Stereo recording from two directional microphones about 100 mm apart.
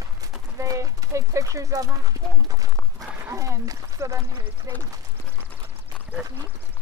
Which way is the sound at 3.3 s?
35° right (ahead or behind).